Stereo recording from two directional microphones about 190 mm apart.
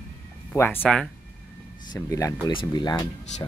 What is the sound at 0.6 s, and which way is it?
Speech, 10° left (ahead or behind).